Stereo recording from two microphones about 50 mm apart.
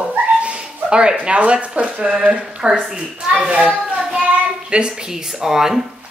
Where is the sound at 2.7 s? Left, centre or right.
Centre.